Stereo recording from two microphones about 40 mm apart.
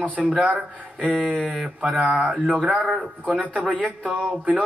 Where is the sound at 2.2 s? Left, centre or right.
Right.